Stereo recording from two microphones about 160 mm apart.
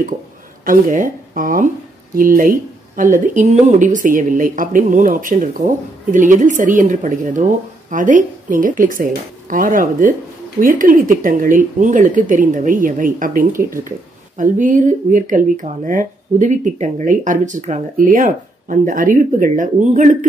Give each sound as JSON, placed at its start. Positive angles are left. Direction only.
{"t": 0.7, "sound": "speech", "side_deg": -55}